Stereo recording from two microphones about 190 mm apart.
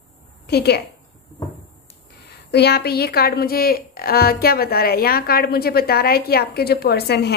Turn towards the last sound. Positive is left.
turn(degrees=60)  # may be behind; listen again after turning